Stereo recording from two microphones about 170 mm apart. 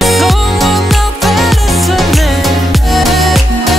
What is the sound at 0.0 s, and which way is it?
Music, centre (ahead or behind).